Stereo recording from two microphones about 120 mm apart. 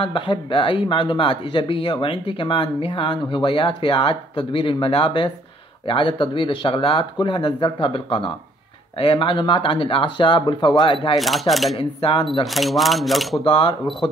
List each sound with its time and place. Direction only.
0.0 s speech: 45° left (ahead or behind)
11.1 s speech: centre (ahead or behind)
11.8 s speech: 45° left (ahead or behind)
12.4 s speech: centre (ahead or behind)
13.5 s speech: 40° left (ahead or behind)